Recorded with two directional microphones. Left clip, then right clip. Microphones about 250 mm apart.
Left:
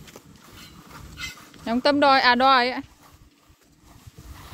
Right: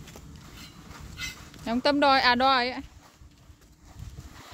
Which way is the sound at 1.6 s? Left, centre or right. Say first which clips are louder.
Left 4 dB; centre.